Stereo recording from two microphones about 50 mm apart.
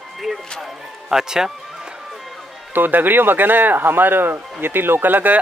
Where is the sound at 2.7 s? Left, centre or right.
Right.